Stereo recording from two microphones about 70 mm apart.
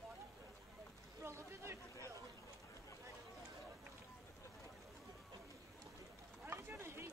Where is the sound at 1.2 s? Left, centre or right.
Right.